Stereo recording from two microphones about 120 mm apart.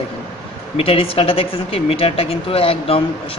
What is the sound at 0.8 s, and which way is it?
Speech, 50° left (ahead or behind).